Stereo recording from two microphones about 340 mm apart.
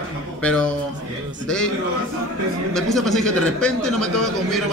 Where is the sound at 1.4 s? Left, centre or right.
Centre.